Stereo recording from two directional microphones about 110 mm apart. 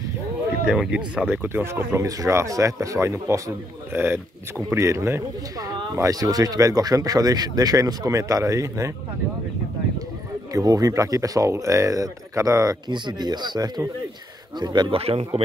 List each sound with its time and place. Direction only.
0.7 s speech: 10° right (ahead or behind)
1.3 s speech: 20° right (ahead or behind)
10.5 s speech: 30° right (ahead or behind)
15.0 s speech: 60° right (ahead or behind)